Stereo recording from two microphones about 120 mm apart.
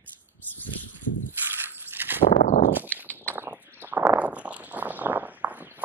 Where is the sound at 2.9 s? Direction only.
15° left (ahead or behind).